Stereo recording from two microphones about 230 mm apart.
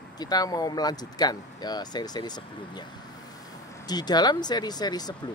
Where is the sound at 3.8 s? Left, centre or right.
Centre.